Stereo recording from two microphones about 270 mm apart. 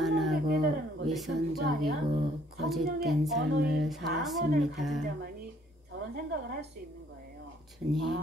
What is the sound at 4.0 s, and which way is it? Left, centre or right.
Speech, right.